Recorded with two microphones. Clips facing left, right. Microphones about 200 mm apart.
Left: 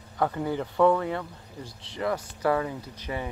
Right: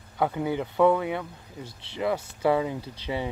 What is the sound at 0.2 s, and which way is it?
Speech, 5° right (ahead or behind).